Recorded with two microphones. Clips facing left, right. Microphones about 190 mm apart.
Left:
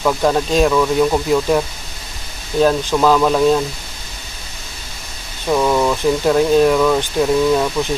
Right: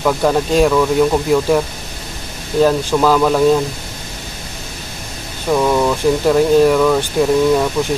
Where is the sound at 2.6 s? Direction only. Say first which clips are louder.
Right 1 dB; 5° right (ahead or behind).